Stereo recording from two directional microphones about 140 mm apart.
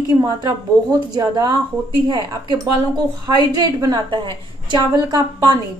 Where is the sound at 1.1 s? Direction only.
30° right (ahead or behind).